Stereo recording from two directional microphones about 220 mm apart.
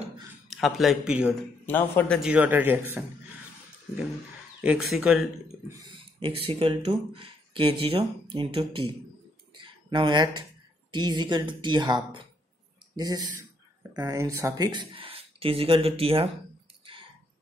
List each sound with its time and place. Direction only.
0.5 s a man's voice: centre (ahead or behind)
1.7 s a man's voice: 10° left (ahead or behind); by 3.0 s 10° right (ahead or behind)
4.6 s a man's voice: 5° right (ahead or behind)
5.9 s speech: 25° right (ahead or behind)
9.6 s a sound: 20° right (ahead or behind)
10.9 s speech: 20° right (ahead or behind)